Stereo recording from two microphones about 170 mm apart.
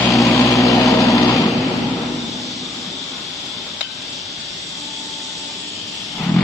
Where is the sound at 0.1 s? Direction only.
20° left (ahead or behind).